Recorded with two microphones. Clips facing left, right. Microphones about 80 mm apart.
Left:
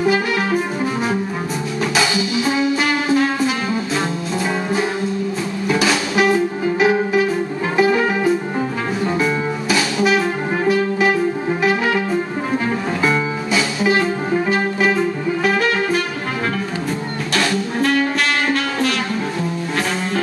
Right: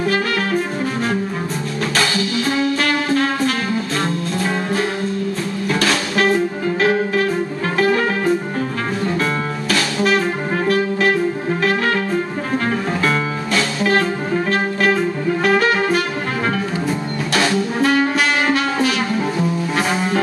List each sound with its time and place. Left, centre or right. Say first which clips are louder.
0.0 s music: left 1 dB; centre
2.8 s music: left 1 dB; centre
5.7 s music: left 1 dB; centre
13.0 s music: left 1 dB; centre
15.4 s music: right 2 dB; centre
17.3 s music: right 2 dB; centre